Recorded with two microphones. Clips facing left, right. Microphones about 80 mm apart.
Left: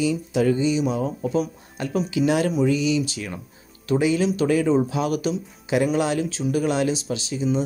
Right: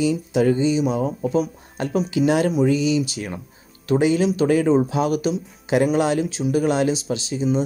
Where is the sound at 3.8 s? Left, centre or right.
Right.